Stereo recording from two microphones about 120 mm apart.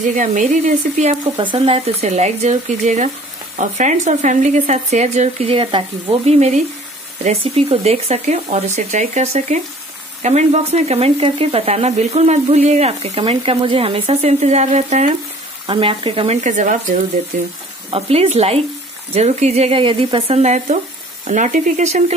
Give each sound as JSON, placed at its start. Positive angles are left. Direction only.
{"t": 0.1, "sound": "speech", "side_deg": -90}
{"t": 1.2, "sound": "speech", "side_deg": -40}
{"t": 2.0, "sound": "speech", "side_deg": -65}
{"t": 15.6, "sound": "speech", "side_deg": -45}
{"t": 16.4, "sound": "speech", "side_deg": -90}
{"t": 17.9, "sound": "speech", "side_deg": -55}
{"t": 19.8, "sound": "speech", "side_deg": -45}
{"t": 21.3, "sound": "speech", "side_deg": -90}